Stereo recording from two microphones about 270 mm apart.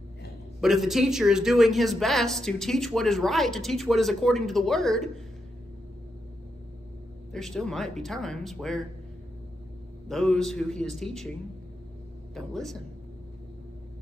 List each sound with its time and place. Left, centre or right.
0.6 s speech: centre
7.3 s speech: centre
10.0 s speech: centre
12.4 s speech: centre